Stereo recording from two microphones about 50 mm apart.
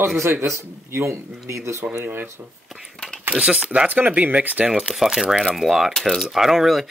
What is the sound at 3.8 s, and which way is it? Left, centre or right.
Speech, right.